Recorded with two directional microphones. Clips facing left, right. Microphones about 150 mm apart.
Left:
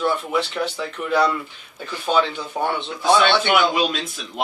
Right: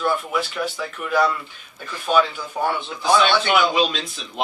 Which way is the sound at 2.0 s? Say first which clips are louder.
Right 1 dB; 25° left (ahead or behind).